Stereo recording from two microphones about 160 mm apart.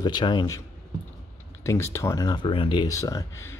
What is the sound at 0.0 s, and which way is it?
Speech, 30° left (ahead or behind).